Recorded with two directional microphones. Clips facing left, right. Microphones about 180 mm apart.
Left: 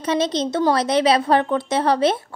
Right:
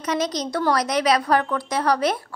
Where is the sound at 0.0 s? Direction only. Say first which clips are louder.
Left 4 dB; 25° left (ahead or behind).